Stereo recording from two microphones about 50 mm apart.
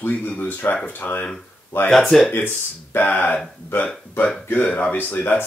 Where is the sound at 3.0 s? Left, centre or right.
Left.